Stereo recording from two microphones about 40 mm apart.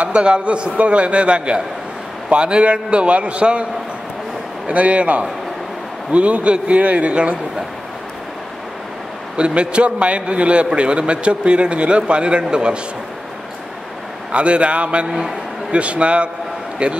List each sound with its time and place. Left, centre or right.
0.0 s a man's voice: right
4.6 s a man's voice: right
9.4 s a man's voice: right
14.3 s a man's voice: right
15.0 s a man's voice: centre
15.7 s a man's voice: right